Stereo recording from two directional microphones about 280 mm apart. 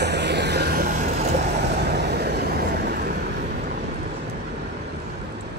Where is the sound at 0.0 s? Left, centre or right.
Right.